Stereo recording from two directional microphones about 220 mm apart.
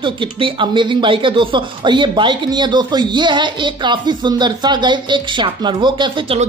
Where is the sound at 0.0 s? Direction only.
20° right (ahead or behind).